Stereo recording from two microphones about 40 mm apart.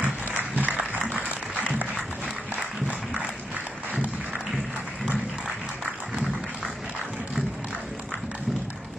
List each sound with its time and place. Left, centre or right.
0.0 s applause: right
1.0 s applause: right